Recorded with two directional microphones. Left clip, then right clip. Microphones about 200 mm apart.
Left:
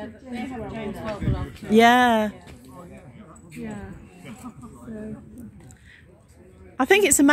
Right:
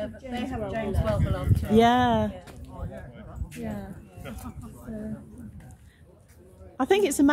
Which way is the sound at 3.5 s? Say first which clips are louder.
Even; 60° right (ahead or behind).